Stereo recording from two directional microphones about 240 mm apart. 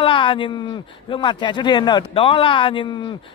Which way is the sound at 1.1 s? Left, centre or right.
Centre.